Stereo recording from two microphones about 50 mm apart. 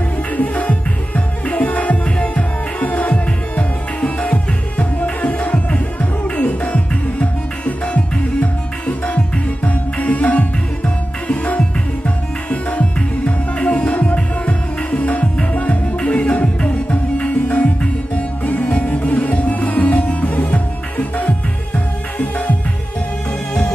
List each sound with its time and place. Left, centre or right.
0.4 s music: left